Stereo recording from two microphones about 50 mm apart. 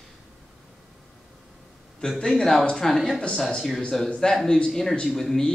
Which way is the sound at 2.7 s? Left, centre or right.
Centre.